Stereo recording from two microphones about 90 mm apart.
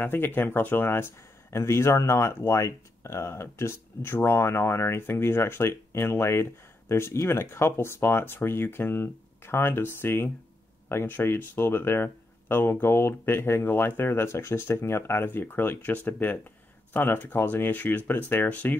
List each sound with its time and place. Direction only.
0.0 s speech: 20° left (ahead or behind)